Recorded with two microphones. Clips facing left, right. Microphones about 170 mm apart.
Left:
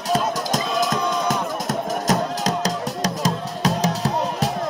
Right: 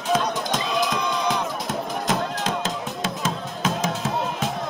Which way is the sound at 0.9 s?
Centre (ahead or behind).